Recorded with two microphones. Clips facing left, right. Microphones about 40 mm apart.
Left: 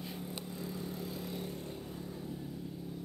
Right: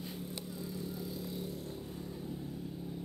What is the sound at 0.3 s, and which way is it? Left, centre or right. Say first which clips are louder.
Vehicle: left 1 dB; left.